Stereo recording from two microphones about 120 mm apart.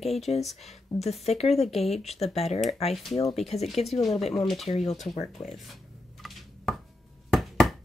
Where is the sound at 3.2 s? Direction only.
Centre (ahead or behind).